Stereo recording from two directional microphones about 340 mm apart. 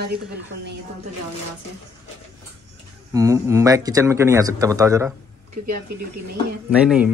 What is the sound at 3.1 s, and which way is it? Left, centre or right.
A man's voice, centre.